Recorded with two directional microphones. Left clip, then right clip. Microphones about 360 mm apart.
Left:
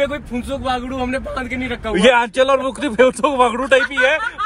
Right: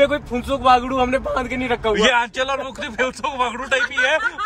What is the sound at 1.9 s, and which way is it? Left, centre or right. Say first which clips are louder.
A man's voice: left 7 dB; centre.